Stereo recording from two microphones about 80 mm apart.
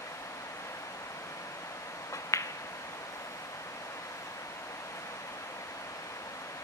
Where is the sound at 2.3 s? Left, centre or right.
Left.